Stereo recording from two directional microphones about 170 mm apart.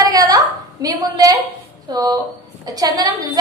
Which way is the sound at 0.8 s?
20° right (ahead or behind).